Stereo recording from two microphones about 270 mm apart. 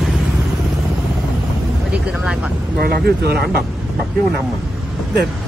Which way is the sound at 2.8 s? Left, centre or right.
Right.